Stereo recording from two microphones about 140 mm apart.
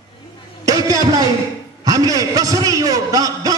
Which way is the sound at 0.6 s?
25° right (ahead or behind).